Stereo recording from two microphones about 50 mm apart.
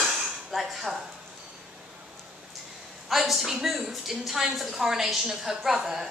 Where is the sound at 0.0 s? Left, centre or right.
Centre.